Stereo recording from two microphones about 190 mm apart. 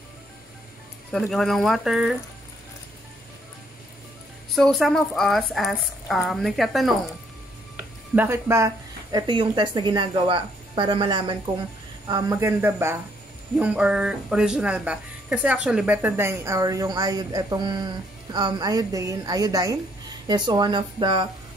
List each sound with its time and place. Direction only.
1.1 s a woman's voice: centre (ahead or behind)
4.6 s a woman's voice: centre (ahead or behind)
7.7 s a woman's voice: 10° right (ahead or behind)